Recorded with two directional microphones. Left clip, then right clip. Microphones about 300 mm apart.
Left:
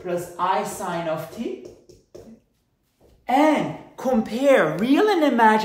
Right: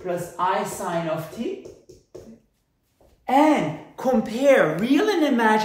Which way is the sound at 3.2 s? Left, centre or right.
Centre.